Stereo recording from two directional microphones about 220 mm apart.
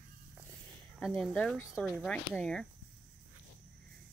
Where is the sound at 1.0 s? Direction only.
Centre (ahead or behind).